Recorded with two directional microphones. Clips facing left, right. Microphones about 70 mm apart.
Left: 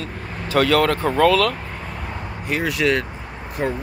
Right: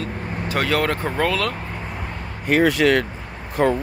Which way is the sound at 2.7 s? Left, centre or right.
Right.